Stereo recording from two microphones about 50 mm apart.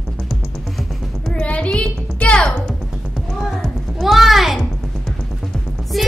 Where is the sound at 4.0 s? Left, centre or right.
Centre.